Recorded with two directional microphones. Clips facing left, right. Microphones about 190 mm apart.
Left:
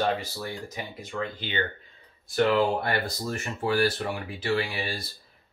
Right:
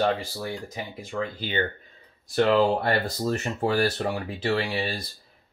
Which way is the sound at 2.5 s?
35° right (ahead or behind).